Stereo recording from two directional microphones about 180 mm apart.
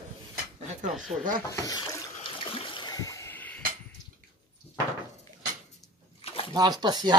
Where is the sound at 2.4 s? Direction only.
30° left (ahead or behind); by 3.6 s 10° left (ahead or behind).